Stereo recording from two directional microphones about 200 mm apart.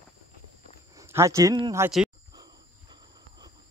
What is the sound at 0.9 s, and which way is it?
Speech, 15° right (ahead or behind).